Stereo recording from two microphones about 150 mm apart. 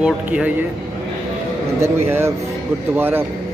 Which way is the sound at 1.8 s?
15° right (ahead or behind).